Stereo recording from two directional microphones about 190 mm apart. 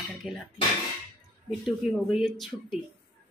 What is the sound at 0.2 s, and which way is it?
Speech, centre (ahead or behind).